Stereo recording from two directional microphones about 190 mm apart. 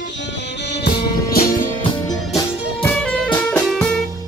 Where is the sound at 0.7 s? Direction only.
60° left (ahead or behind).